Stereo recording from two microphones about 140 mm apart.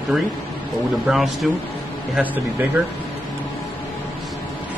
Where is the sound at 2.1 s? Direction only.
10° right (ahead or behind).